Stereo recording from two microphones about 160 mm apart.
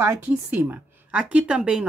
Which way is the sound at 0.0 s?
15° right (ahead or behind).